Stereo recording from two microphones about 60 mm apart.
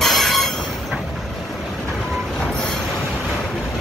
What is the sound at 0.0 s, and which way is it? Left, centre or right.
Train, centre.